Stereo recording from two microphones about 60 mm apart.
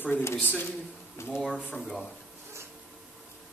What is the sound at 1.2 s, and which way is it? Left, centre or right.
Speech, left.